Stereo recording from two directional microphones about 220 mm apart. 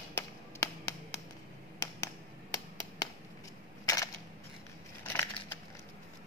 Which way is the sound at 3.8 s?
15° left (ahead or behind).